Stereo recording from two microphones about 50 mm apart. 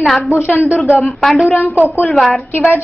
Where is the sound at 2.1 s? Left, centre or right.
Centre.